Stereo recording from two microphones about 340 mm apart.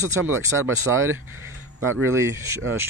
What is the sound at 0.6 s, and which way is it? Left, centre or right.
Speech, right.